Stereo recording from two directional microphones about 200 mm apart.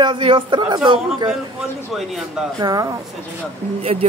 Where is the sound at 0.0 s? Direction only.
25° right (ahead or behind).